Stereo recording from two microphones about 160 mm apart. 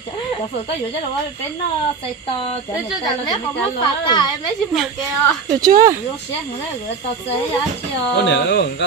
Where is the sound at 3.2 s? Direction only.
25° left (ahead or behind).